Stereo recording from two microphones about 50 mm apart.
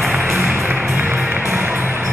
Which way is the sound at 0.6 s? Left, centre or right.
Right.